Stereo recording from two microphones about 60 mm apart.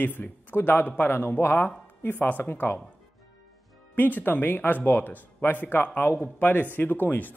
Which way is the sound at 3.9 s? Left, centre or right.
Left.